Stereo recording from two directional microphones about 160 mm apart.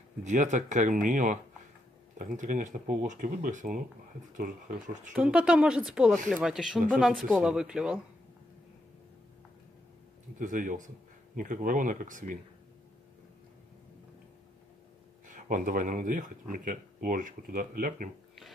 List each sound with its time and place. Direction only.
0.2 s speech: 50° right (ahead or behind)
5.1 s speech: 5° right (ahead or behind)
10.4 s speech: 55° right (ahead or behind)
15.2 s speech: 55° right (ahead or behind)